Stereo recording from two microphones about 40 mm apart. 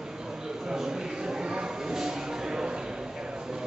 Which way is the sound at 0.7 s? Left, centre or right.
Centre.